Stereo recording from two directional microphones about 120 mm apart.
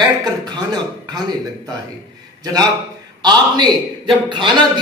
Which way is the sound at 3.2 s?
40° right (ahead or behind).